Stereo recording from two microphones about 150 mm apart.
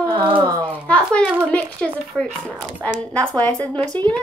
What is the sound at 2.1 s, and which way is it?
Speech, 5° left (ahead or behind).